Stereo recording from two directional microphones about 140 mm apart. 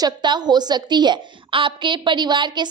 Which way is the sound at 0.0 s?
30° right (ahead or behind).